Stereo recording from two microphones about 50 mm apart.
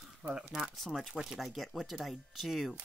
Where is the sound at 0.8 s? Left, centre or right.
Centre.